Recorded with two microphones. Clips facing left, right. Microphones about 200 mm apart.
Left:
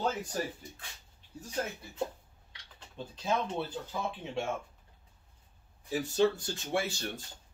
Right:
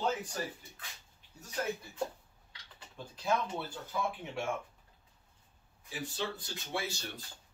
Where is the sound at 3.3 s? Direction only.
20° left (ahead or behind).